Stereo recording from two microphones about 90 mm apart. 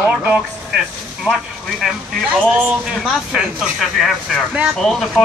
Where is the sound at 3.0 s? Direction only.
5° right (ahead or behind).